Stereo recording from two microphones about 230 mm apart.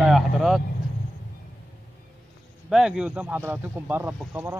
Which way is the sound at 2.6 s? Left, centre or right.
Centre.